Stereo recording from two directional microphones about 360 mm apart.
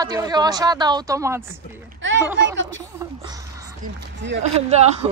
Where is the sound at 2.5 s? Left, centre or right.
Right.